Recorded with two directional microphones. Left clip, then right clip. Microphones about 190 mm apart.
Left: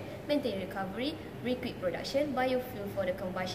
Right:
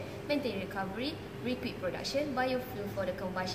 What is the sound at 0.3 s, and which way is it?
A woman's voice, centre (ahead or behind).